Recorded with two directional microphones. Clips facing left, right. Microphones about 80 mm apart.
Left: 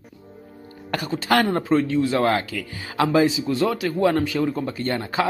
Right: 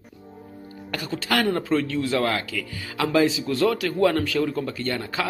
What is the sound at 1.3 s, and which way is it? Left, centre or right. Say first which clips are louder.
A man's voice: left 3 dB; left.